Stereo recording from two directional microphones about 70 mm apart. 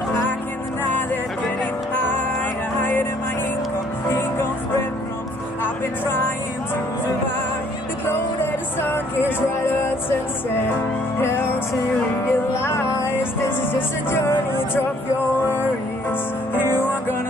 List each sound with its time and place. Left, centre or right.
2.8 s music: left
4.1 s music: left
8.0 s music: left
16.1 s music: left